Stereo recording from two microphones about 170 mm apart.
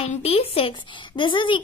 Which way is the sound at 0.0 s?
35° left (ahead or behind).